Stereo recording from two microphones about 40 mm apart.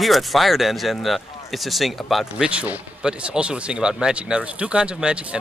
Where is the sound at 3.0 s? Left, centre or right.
Right.